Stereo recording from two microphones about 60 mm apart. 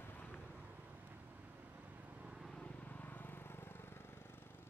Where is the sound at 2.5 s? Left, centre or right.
Left.